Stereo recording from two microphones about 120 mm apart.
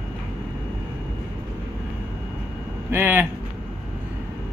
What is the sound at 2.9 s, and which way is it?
Speech, 20° right (ahead or behind).